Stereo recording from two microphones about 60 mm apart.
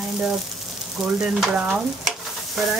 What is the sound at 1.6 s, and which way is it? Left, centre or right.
Stir, centre.